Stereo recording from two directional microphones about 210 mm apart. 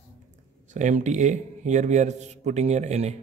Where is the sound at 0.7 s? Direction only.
35° right (ahead or behind).